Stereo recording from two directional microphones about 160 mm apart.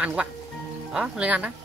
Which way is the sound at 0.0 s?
5° right (ahead or behind).